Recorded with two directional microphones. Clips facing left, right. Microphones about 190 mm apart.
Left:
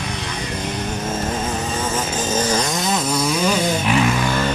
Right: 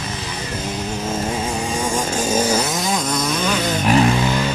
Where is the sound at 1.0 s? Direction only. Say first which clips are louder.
Right 1 dB; 10° right (ahead or behind); by 3.5 s 10° left (ahead or behind).